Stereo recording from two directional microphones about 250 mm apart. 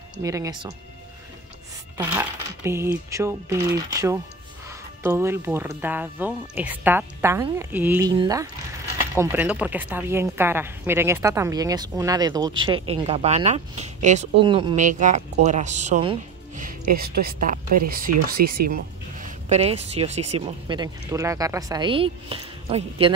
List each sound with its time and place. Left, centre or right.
0.2 s speech: centre
2.0 s speech: centre
14.9 s speech: right
16.6 s speech: right
19.5 s speech: right